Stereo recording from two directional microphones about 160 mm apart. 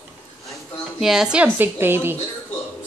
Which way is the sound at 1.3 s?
10° right (ahead or behind).